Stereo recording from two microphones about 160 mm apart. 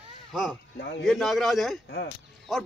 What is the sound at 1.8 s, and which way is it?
Speech, 80° left.